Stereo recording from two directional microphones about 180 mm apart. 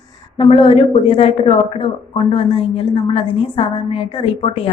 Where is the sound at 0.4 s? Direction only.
30° left (ahead or behind).